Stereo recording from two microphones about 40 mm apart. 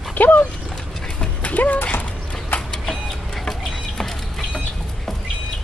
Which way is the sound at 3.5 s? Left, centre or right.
Centre.